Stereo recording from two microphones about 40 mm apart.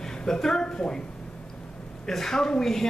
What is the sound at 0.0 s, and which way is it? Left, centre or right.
A woman's voice, centre.